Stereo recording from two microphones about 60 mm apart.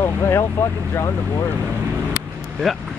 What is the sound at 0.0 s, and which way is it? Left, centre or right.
Speech, left.